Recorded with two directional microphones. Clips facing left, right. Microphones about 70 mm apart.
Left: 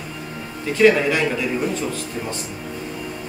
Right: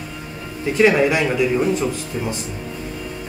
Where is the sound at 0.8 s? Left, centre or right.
Centre.